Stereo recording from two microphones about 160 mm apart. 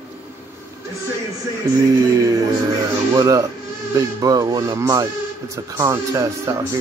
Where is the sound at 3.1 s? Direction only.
20° right (ahead or behind).